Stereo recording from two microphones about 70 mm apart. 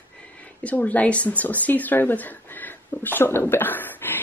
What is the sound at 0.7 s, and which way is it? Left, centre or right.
Speech, left.